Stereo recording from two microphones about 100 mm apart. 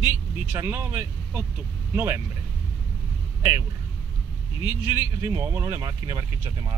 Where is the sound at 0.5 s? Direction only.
20° right (ahead or behind).